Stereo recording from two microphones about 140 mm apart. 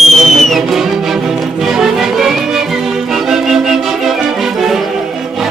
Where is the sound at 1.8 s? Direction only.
5° right (ahead or behind).